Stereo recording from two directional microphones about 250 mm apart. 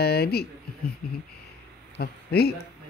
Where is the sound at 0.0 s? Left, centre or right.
Left.